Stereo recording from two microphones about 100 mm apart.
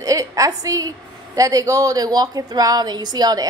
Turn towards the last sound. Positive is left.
turn(degrees=-40)  # may be behind; listen again after turning